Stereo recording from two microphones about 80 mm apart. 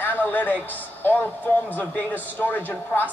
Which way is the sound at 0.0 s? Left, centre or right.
Left.